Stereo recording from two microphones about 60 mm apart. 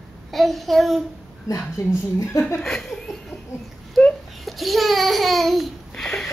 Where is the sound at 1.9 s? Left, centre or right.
Left.